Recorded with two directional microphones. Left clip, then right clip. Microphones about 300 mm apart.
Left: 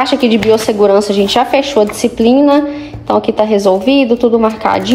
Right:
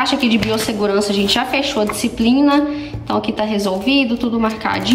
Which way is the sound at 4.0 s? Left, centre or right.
Right.